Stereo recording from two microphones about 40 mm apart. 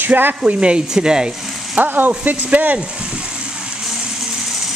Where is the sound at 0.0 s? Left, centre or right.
Right.